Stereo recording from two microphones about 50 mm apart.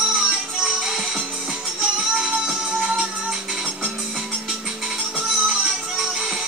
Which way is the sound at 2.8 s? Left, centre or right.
Centre.